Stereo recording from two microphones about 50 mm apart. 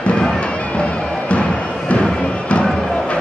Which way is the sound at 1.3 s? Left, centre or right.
Left.